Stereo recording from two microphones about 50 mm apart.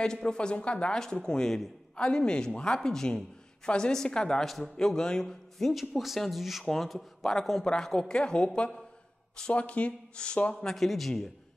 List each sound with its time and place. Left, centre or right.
0.0 s a man's voice: centre
4.5 s speech: centre
5.7 s speech: centre
10.5 s speech: centre